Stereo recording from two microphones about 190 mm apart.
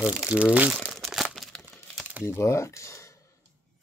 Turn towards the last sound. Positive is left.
turn(degrees=15)  # may be behind; listen again after turning